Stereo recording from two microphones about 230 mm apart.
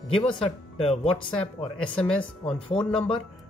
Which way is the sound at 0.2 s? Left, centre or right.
Centre.